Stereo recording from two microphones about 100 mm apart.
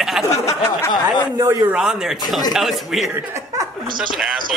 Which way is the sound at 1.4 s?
30° right (ahead or behind).